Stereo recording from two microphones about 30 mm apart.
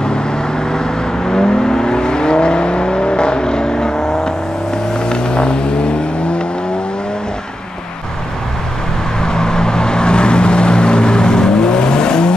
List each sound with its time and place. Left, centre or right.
0.7 s vehicle: left
5.0 s vehicle: left
9.2 s vehicle: left